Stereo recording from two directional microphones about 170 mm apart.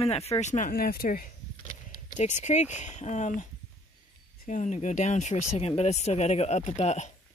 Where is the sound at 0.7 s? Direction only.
60° left (ahead or behind).